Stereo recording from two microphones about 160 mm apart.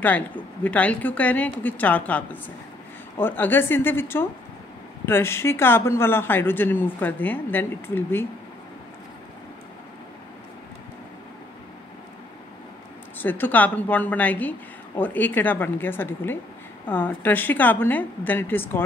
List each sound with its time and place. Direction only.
0.7 s a man's voice: 10° left (ahead or behind)
13.2 s a man's voice: 10° left (ahead or behind)